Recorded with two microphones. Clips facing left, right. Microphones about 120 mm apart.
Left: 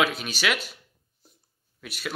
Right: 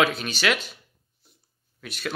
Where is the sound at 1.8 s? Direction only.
5° left (ahead or behind).